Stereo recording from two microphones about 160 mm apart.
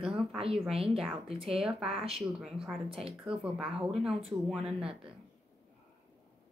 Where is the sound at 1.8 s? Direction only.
35° right (ahead or behind).